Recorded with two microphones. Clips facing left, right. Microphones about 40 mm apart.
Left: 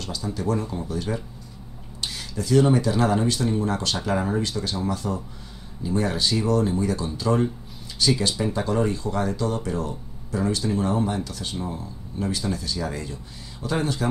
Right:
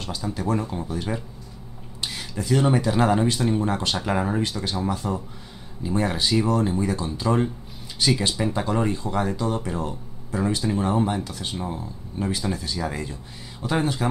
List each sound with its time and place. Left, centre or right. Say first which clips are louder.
0.3 s speech: even; right
8.2 s speech: even; right